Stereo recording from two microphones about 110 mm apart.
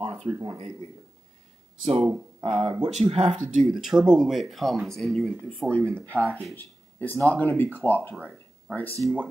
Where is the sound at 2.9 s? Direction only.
70° right (ahead or behind).